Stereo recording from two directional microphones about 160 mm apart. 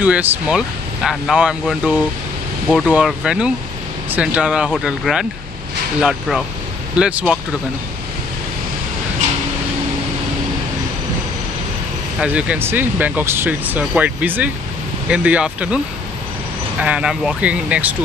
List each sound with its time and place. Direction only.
0.0 s speech: 10° right (ahead or behind)
12.2 s speech: 10° right (ahead or behind)
16.8 s speech: 5° right (ahead or behind)